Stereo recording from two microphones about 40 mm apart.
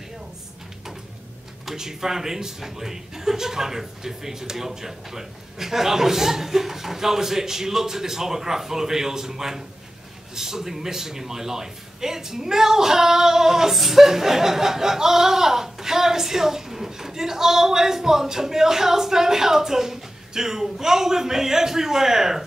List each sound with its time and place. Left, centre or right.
1.7 s a man's voice: centre